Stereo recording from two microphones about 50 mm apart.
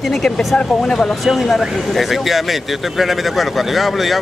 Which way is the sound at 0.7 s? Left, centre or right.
Centre.